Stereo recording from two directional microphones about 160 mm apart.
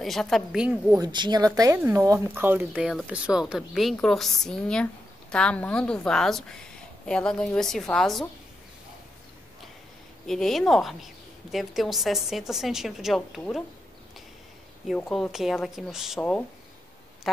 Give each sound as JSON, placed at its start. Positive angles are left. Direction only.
{"t": 0.0, "sound": "a woman's voice", "side_deg": 0}
{"t": 0.9, "sound": "a woman's voice", "side_deg": -25}
{"t": 10.2, "sound": "a woman's voice", "side_deg": 0}
{"t": 14.9, "sound": "a woman's voice", "side_deg": 0}
{"t": 16.2, "sound": "speech", "side_deg": 10}